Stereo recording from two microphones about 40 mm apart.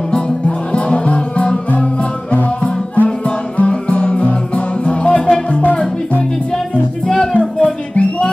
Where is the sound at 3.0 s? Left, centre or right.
Left.